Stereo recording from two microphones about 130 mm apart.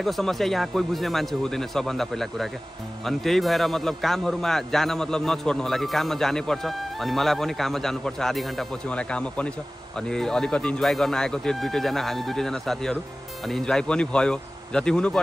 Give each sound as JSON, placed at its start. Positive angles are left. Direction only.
{"t": 0.0, "sound": "a man's voice", "side_deg": 0}